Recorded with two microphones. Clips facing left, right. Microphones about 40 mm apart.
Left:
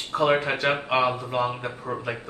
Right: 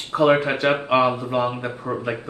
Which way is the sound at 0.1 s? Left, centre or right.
Centre.